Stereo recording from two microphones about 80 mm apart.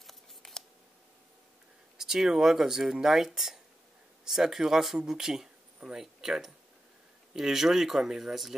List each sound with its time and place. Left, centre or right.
0.0 s scissors: centre
2.0 s speech: centre